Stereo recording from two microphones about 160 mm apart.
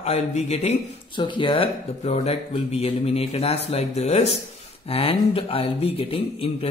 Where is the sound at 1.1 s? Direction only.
30° left (ahead or behind).